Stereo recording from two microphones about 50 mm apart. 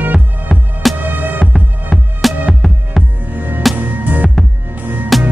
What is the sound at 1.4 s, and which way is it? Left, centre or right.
Music, centre.